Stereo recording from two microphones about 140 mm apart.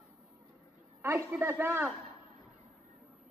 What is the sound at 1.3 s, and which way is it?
Speech, 15° right (ahead or behind).